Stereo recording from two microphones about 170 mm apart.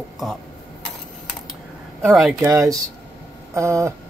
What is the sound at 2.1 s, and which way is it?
Speech, centre (ahead or behind).